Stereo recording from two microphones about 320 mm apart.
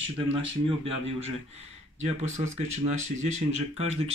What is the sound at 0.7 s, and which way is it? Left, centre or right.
Speech, centre.